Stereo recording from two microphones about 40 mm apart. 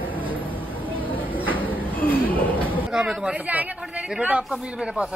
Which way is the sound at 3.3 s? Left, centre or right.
Right.